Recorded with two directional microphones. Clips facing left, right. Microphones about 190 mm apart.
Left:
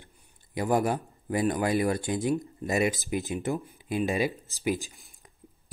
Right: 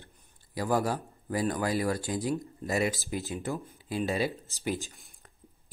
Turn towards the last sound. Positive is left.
turn(degrees=15)  # may be behind; listen again after turning